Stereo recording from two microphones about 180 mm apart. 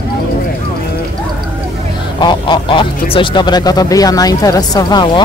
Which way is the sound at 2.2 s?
25° left (ahead or behind).